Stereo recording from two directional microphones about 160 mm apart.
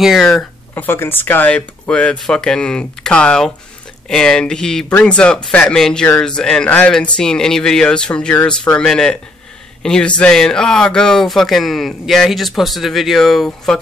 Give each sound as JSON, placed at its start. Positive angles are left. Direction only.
{"t": 0.0, "sound": "speech", "side_deg": 0}